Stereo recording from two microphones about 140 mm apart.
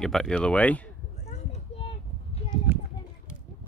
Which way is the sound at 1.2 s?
50° left (ahead or behind).